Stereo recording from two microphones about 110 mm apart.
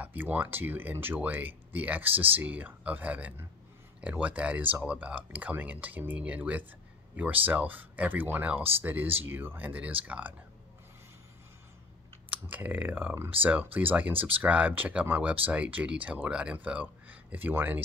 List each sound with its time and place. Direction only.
0.0 s speech: 15° right (ahead or behind)
12.4 s speech: 15° right (ahead or behind)